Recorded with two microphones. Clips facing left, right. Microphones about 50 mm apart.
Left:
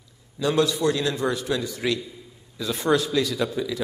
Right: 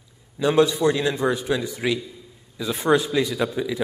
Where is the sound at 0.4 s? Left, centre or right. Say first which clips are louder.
Right 3 dB; right.